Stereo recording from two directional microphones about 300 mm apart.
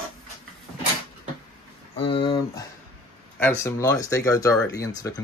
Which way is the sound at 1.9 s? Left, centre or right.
Centre.